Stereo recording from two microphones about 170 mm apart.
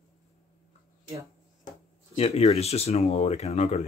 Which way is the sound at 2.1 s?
40° left (ahead or behind).